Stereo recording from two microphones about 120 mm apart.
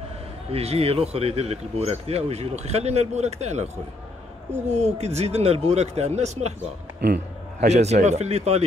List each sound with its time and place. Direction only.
0.5 s speech: 60° right (ahead or behind)
7.6 s speech: 65° right (ahead or behind)